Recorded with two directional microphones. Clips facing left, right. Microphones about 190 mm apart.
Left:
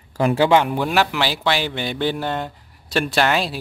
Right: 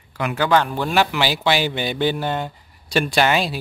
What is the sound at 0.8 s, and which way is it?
Speech, centre (ahead or behind).